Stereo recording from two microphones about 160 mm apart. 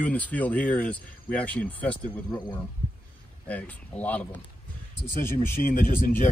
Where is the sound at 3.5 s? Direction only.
10° left (ahead or behind).